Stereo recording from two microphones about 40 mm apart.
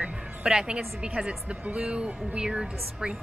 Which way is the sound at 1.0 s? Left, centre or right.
Right.